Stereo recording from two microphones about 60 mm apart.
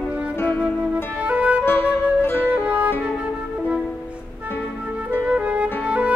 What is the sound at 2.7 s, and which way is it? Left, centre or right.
Music, right.